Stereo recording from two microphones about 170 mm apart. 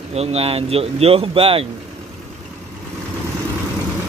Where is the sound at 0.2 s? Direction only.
35° right (ahead or behind).